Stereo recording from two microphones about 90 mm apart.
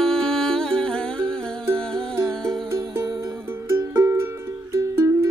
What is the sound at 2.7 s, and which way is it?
Music, 30° right (ahead or behind).